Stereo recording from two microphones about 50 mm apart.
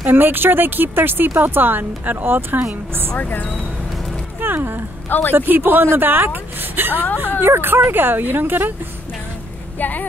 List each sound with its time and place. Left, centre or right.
0.0 s a woman's voice: right
3.2 s speech: left
4.4 s a sound: right
5.3 s speech: right
9.8 s speech: left